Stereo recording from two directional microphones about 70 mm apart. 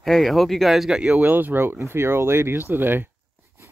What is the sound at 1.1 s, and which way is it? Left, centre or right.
Speech, right.